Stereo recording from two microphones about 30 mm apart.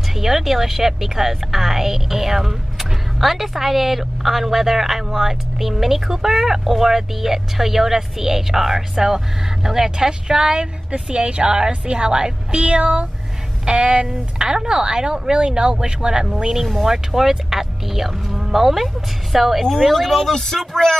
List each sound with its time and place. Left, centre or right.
0.1 s speech: centre
10.6 s a woman's voice: right
11.4 s speech: right
12.5 s a woman's voice: right
13.7 s speech: right
15.3 s a woman's voice: right; by 19.6 s centre
19.6 s speech: centre